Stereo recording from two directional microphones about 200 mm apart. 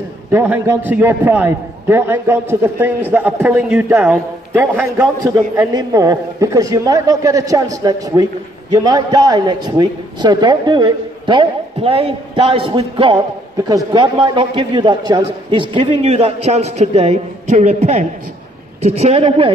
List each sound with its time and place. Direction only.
0.3 s a man's voice: 10° right (ahead or behind); by 19.5 s 30° right (ahead or behind)